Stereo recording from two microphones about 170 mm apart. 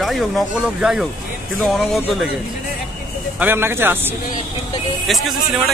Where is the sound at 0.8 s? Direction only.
5° right (ahead or behind).